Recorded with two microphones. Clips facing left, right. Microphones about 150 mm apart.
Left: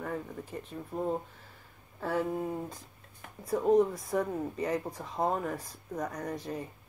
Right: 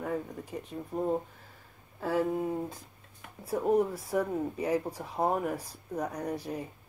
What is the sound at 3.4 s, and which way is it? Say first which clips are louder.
Speech: left 2 dB; 10° right (ahead or behind).